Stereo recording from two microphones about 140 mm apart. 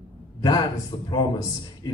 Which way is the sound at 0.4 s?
30° left (ahead or behind).